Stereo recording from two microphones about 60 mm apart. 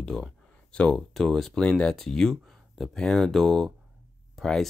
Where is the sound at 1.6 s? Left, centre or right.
Centre.